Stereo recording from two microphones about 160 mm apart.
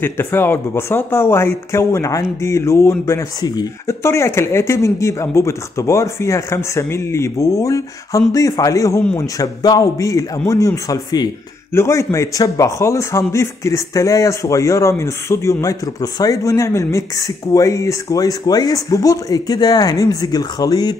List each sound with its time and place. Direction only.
0.0 s a man's voice: 15° left (ahead or behind)